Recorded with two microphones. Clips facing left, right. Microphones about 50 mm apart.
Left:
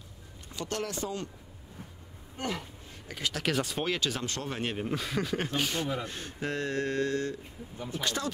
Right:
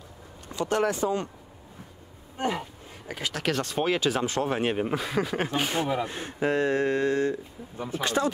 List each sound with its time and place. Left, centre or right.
0.7 s speech: centre
2.3 s a sound: right
3.1 s speech: centre
3.8 s speech: centre
5.6 s speech: right
7.7 s speech: right
8.0 s speech: right